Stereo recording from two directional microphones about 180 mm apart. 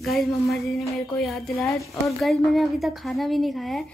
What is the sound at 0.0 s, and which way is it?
Speech, centre (ahead or behind).